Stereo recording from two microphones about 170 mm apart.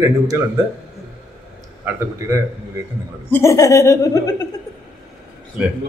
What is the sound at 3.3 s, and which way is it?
Speech, 15° left (ahead or behind).